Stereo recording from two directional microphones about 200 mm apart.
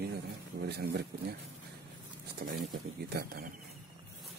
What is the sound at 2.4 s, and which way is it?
Speech, 55° right (ahead or behind).